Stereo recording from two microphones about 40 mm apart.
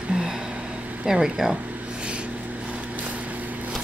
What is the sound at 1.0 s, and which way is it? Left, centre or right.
Speech, centre.